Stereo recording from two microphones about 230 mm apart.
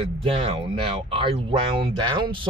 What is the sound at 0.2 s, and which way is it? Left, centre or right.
Speech, right.